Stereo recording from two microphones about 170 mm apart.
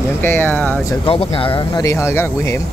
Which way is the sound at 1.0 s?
35° left (ahead or behind).